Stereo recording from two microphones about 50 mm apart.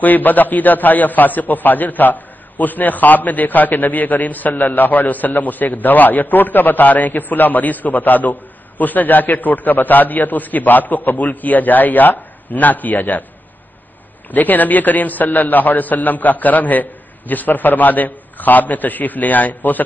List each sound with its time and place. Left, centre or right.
0.0 s a man's voice: left
14.3 s a man's voice: left